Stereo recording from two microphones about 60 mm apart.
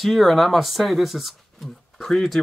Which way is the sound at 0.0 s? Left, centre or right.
Centre.